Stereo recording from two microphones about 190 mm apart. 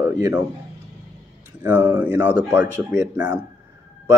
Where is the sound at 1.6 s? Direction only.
10° right (ahead or behind).